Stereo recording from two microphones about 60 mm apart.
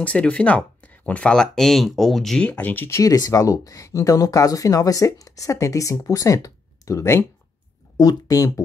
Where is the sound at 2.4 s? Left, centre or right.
Left.